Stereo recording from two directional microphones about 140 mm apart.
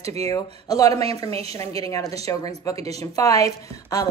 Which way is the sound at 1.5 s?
25° left (ahead or behind).